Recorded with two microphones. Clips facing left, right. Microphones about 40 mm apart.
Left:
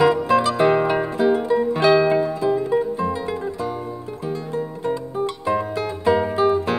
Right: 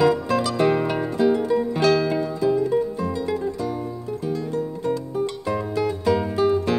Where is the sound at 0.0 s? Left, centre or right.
Centre.